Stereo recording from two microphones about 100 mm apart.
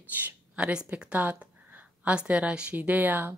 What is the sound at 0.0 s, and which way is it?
Speech, 15° right (ahead or behind).